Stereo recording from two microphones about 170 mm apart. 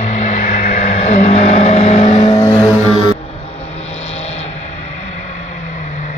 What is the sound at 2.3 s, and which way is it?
Vehicle, 20° left (ahead or behind).